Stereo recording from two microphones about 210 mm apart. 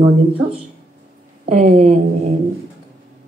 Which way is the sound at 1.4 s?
30° right (ahead or behind).